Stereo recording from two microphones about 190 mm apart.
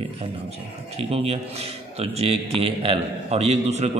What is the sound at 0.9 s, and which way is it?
A man's voice, 30° right (ahead or behind).